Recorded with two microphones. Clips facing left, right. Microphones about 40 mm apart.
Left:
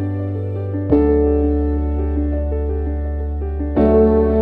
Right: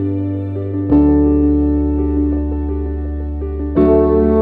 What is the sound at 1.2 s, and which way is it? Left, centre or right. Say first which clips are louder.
Music: right 4 dB; left.